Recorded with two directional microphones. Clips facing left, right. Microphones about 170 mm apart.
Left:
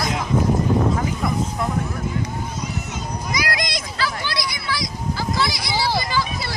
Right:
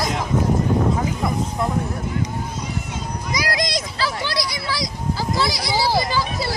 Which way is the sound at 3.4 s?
35° right (ahead or behind).